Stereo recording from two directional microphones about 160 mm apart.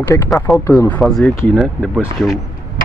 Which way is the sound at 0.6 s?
15° left (ahead or behind).